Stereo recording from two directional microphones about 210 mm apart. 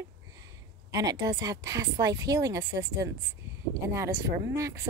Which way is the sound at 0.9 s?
15° right (ahead or behind).